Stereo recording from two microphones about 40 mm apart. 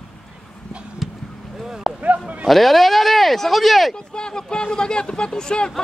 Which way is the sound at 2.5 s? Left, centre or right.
Centre.